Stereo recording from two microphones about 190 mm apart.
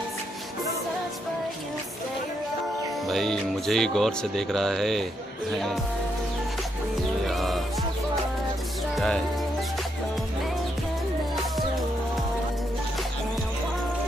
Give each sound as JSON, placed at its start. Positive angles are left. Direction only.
{"t": 3.1, "sound": "speech", "side_deg": 0}
{"t": 7.2, "sound": "music", "side_deg": 0}
{"t": 8.9, "sound": "music", "side_deg": 0}